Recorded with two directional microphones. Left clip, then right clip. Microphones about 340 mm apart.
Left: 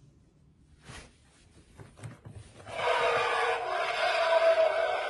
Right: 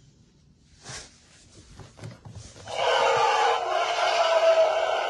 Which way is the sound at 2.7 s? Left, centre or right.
Centre.